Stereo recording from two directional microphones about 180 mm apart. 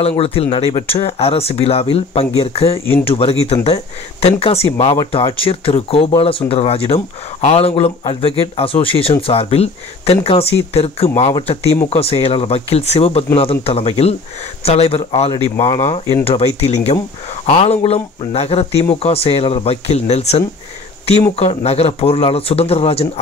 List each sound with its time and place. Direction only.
0.0 s speech: 35° left (ahead or behind)
0.7 s speech: 25° left (ahead or behind)
1.0 s speech: 35° left (ahead or behind)